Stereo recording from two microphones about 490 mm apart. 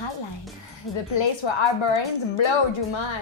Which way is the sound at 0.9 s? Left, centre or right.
Left.